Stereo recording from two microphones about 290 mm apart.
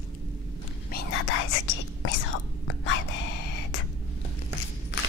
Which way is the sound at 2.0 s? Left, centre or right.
Left.